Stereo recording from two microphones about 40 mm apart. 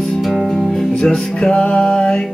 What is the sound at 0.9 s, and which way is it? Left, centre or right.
Music, left.